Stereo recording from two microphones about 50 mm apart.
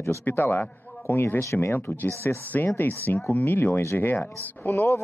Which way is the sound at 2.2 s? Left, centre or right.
Left.